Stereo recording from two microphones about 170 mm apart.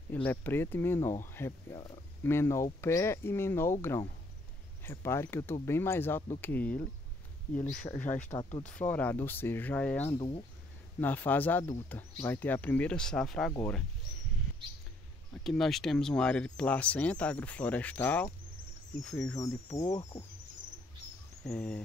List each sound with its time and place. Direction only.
0.1 s speech: 10° left (ahead or behind)
4.8 s speech: 15° left (ahead or behind)
8.3 s speech: 20° left (ahead or behind)
8.6 s speech: 10° left (ahead or behind)
10.1 s speech: 30° left (ahead or behind)
11.0 s speech: 10° left (ahead or behind)
13.5 s speech: 15° left (ahead or behind)
15.3 s speech: centre (ahead or behind)
19.3 s speech: 20° left (ahead or behind)
21.5 s speech: 5° left (ahead or behind)